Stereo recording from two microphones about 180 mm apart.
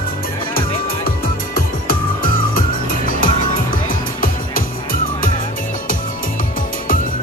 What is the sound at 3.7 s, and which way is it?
Music, 50° left (ahead or behind).